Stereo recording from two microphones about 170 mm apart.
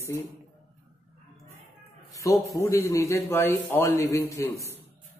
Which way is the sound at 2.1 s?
20° left (ahead or behind).